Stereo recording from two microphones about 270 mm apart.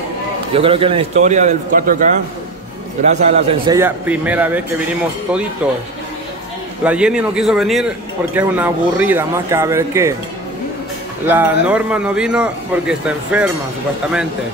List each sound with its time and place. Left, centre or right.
0.5 s a man's voice: centre
3.1 s a man's voice: right
3.7 s a man's voice: centre
6.8 s a man's voice: centre
11.2 s a man's voice: centre